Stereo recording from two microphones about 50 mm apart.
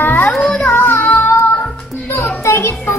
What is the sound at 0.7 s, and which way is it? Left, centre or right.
Child singing, left.